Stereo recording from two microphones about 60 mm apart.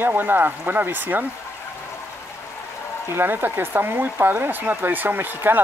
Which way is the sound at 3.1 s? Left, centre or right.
Right.